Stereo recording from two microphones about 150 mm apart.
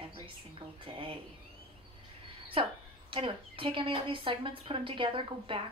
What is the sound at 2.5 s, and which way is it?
A woman's voice, 35° right (ahead or behind).